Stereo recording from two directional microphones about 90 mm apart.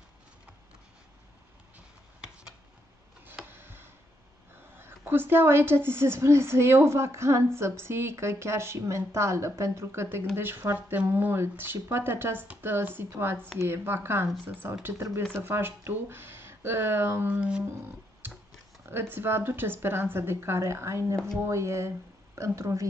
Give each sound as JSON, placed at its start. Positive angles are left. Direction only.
{"t": 3.4, "sound": "tick", "side_deg": -25}
{"t": 4.7, "sound": "a woman's voice", "side_deg": -25}
{"t": 18.9, "sound": "a woman's voice", "side_deg": -25}